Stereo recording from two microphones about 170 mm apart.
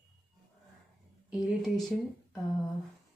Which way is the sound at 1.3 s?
Centre (ahead or behind).